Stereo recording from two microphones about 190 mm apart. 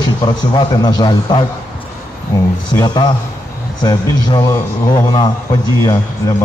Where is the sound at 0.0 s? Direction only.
25° left (ahead or behind).